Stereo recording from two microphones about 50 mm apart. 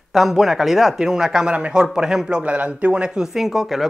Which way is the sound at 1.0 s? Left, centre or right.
Centre.